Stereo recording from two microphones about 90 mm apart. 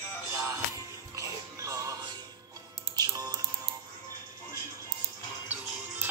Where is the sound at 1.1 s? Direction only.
35° right (ahead or behind).